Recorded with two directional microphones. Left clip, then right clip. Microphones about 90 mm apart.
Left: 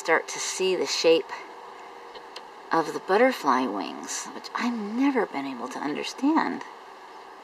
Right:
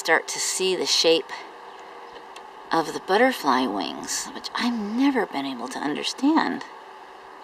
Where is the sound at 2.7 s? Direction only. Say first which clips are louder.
Right 1 dB; centre (ahead or behind).